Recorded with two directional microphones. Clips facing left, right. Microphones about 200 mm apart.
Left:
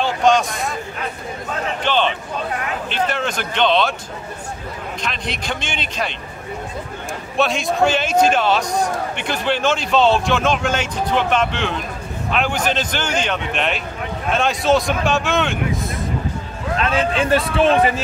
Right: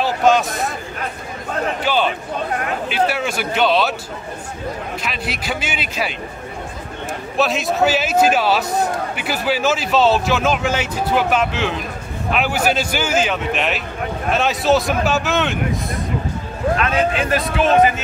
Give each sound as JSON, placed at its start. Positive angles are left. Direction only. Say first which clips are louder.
{"t": 0.0, "sound": "speech", "louder": "right 1 dB", "side_deg": -5}
{"t": 1.8, "sound": "speech", "louder": "left 2 dB", "side_deg": -5}
{"t": 5.0, "sound": "speech", "louder": "left 2 dB", "side_deg": -5}
{"t": 7.3, "sound": "a man's voice", "louder": "even", "side_deg": -5}
{"t": 16.7, "sound": "a man's voice", "louder": "left 1 dB", "side_deg": 30}